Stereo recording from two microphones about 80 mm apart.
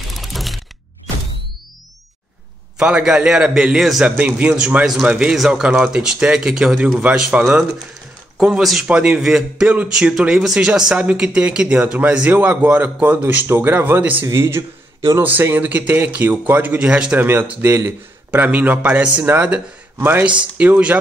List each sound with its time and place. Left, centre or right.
0.1 s mechanisms: centre
2.8 s speech: centre
4.0 s speech: centre
8.9 s speech: centre
9.2 s speech: centre; by 14.2 s right
14.2 s speech: right
15.2 s speech: right
17.3 s speech: right
20.0 s speech: right
20.2 s speech: centre